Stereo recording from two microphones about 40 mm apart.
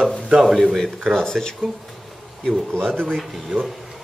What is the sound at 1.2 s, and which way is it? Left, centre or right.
Speech, centre.